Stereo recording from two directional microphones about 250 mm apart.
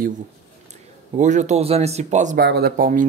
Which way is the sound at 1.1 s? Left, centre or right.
Right.